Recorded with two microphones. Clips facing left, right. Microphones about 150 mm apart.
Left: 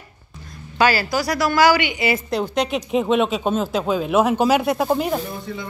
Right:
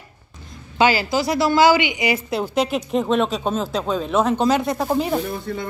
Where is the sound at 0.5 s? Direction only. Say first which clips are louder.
Right 1 dB; 20° right (ahead or behind).